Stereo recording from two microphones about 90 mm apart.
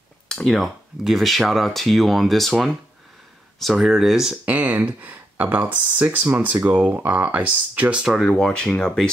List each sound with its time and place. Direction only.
0.3 s speech: 5° left (ahead or behind)
4.5 s speech: 20° right (ahead or behind)
8.1 s speech: 5° left (ahead or behind)